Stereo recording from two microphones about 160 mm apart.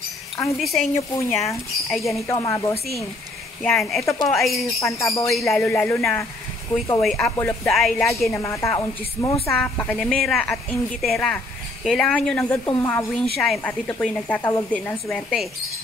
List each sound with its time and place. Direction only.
0.6 s a woman's voice: centre (ahead or behind)
0.9 s speech: 20° left (ahead or behind)
1.9 s a woman's voice: centre (ahead or behind)
2.2 s speech: 20° left (ahead or behind)
3.6 s a woman's voice: 5° left (ahead or behind)
4.0 s speech: 20° left (ahead or behind)
4.3 s a woman's voice: centre (ahead or behind)
4.7 s speech: 20° left (ahead or behind)
5.5 s a woman's voice: 10° left (ahead or behind)
8.3 s a woman's voice: 20° left (ahead or behind)
9.5 s a woman's voice: 5° left (ahead or behind)
12.6 s a woman's voice: 15° left (ahead or behind)
13.1 s a woman's voice: centre (ahead or behind)
13.7 s a woman's voice: 15° left (ahead or behind)